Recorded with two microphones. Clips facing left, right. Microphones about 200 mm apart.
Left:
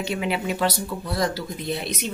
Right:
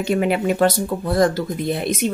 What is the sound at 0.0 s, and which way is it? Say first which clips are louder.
Speech: right 7 dB; 50° right (ahead or behind).